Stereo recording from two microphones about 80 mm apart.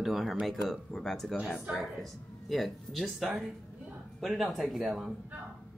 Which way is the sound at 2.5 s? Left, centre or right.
Centre.